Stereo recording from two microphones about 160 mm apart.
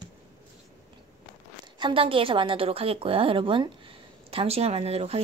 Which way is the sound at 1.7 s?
30° right (ahead or behind).